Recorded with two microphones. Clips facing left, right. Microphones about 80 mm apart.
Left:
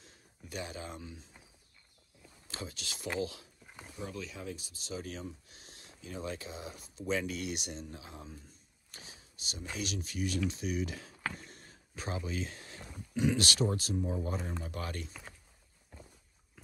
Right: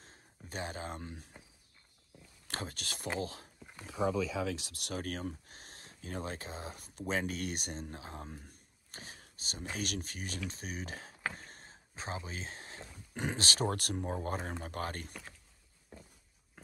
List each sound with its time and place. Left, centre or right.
0.0 s speech: right
2.4 s speech: right
4.0 s speech: right
8.9 s whispering: right
9.8 s speech: right
11.3 s a sound: right
13.1 s speech: right
13.7 s speech: right